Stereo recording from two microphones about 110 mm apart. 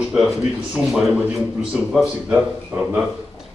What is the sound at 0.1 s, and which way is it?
A man's voice, centre (ahead or behind).